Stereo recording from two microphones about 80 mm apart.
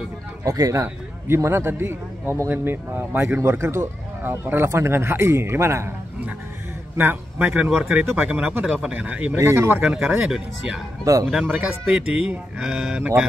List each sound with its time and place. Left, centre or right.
0.4 s speech: right
0.8 s a man's voice: right
7.0 s a man's voice: right
7.7 s speech: centre
8.0 s a man's voice: right
8.3 s speech: centre
9.4 s a man's voice: right
9.8 s speech: centre
11.1 s speech: right
11.4 s a man's voice: centre
11.8 s speech: centre